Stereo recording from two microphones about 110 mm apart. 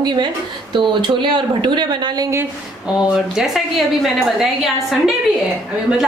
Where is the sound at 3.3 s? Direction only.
Centre (ahead or behind).